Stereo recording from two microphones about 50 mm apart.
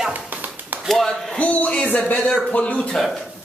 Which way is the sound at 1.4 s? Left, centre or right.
Left.